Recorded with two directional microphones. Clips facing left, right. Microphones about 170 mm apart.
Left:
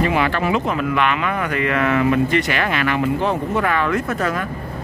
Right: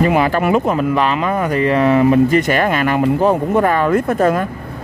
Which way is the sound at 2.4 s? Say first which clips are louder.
Right 5 dB; 45° right (ahead or behind).